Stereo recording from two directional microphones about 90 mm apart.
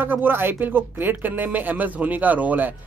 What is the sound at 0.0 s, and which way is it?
A man's voice, 20° right (ahead or behind).